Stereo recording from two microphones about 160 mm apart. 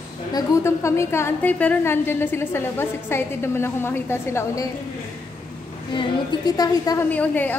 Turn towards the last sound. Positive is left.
turn(degrees=10)  # may be behind; listen again after turning